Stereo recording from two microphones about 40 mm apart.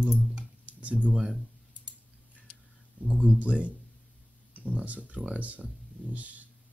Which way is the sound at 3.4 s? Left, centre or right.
Right.